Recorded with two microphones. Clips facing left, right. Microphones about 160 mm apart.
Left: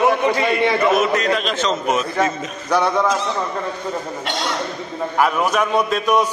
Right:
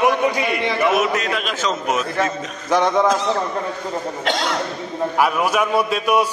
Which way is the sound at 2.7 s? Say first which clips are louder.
Right 1 dB; 15° right (ahead or behind).